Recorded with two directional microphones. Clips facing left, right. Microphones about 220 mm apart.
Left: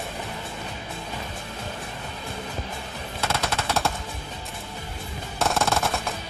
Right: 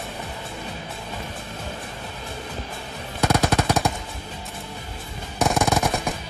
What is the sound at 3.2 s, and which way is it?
Machine gun, 15° right (ahead or behind).